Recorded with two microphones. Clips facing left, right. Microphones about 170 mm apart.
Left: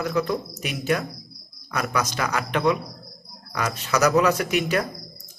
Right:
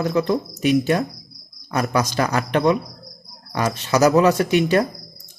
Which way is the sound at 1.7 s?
35° right (ahead or behind).